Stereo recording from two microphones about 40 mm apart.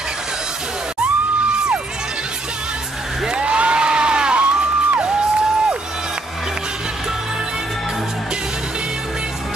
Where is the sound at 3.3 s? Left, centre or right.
Right.